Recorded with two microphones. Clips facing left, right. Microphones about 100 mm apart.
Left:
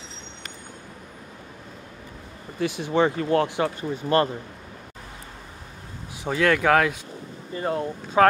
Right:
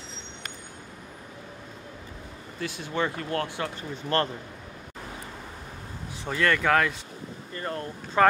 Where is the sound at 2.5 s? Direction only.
15° left (ahead or behind).